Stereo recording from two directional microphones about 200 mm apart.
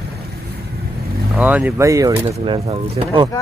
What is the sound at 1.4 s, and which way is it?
Speech, 5° right (ahead or behind).